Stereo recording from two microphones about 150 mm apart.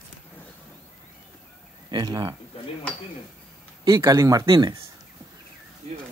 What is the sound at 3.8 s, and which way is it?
Speech, 25° right (ahead or behind).